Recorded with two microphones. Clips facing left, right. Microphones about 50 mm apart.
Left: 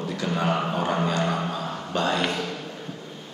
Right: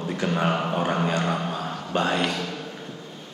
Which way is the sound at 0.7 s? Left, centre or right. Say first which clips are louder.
Right 1 dB; right.